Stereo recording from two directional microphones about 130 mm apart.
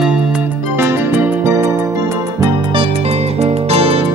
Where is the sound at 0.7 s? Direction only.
20° right (ahead or behind).